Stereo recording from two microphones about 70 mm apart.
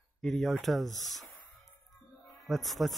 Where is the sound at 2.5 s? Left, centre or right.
Centre.